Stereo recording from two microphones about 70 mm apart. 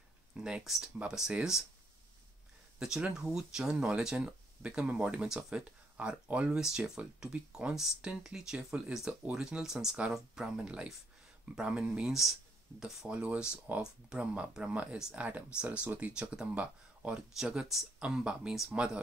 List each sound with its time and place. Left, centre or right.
0.4 s speech: centre
2.8 s speech: centre
6.5 s speech: centre